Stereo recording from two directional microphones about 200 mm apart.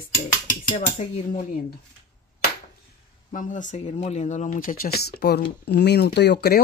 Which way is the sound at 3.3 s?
40° left (ahead or behind).